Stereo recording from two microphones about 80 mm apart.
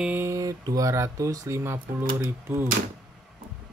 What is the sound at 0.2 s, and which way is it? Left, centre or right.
Speech, right.